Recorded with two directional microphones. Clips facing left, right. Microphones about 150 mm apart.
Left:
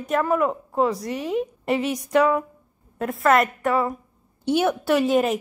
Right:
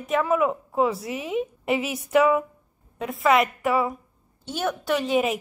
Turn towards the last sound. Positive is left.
turn(degrees=0)  # may be behind; listen again after turning